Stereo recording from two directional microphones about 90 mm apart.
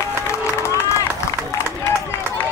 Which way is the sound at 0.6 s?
35° left (ahead or behind).